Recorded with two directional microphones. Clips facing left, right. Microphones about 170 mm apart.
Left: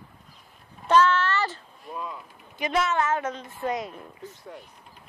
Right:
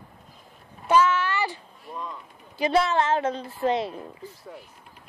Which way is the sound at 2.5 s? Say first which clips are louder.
Right 3 dB; 30° right (ahead or behind).